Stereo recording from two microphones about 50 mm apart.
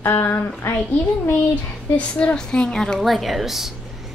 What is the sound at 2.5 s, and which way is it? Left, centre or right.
Speech, centre.